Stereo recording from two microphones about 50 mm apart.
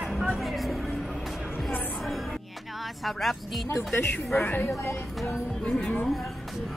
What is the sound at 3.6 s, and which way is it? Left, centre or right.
Speech, left.